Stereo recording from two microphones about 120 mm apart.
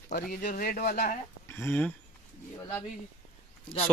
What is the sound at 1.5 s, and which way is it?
Speech, 15° left (ahead or behind).